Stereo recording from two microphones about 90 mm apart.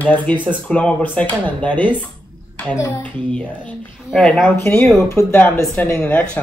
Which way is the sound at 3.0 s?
15° left (ahead or behind).